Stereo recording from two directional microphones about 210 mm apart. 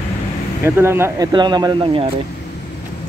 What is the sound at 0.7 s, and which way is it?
Speech, 10° right (ahead or behind).